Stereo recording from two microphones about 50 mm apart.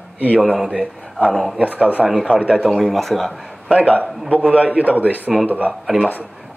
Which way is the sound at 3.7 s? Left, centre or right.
Right.